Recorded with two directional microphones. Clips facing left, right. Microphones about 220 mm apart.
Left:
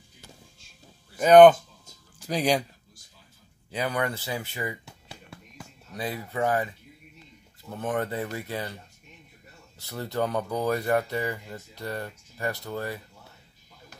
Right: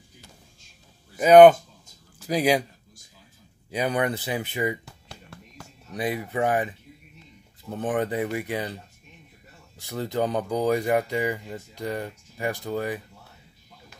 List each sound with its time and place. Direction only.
1.1 s speech: 10° right (ahead or behind)
3.7 s speech: 20° right (ahead or behind)
4.8 s music: 5° left (ahead or behind)
5.9 s speech: 15° right (ahead or behind)
7.7 s speech: 15° right (ahead or behind)
9.8 s speech: 15° right (ahead or behind)